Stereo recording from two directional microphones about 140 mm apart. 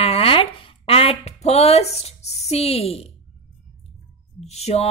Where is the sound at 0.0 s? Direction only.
45° left (ahead or behind).